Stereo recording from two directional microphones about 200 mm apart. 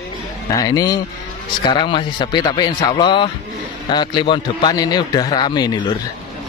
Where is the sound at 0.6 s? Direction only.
20° left (ahead or behind).